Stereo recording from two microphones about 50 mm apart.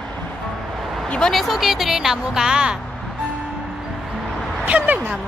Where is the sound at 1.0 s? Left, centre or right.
Centre.